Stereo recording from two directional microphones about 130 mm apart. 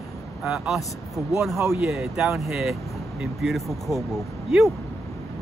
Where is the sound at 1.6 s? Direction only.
20° right (ahead or behind).